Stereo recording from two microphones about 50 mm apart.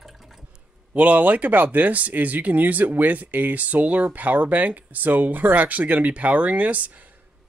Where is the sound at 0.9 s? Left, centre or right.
Right.